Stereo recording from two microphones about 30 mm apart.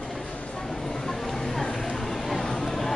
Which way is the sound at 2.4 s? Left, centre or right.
Centre.